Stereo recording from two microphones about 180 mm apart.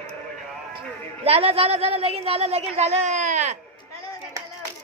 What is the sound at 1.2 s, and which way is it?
A woman's voice, 35° right (ahead or behind).